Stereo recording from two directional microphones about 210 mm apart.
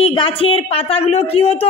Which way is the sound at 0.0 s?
25° left (ahead or behind).